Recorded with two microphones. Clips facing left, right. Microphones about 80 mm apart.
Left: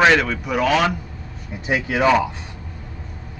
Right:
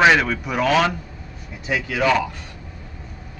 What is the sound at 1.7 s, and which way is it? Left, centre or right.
Speech, left.